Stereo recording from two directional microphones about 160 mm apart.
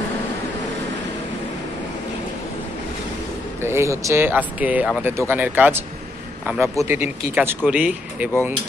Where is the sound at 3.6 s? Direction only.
15° right (ahead or behind).